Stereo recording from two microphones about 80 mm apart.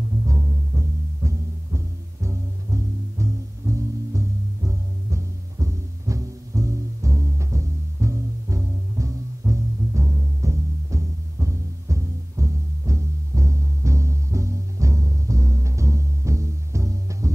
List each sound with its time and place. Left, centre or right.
0.2 s music: right